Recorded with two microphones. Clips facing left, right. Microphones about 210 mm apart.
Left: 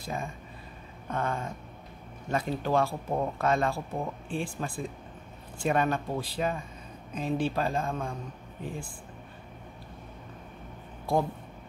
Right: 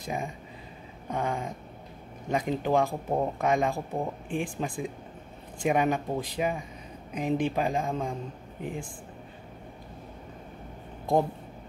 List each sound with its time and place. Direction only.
0.0 s speech: 15° right (ahead or behind)